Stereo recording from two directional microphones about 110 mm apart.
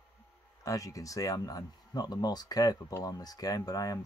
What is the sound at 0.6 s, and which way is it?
Speech, 30° left (ahead or behind).